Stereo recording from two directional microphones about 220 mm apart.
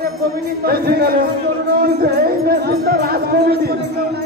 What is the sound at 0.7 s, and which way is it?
Speech, 45° right (ahead or behind).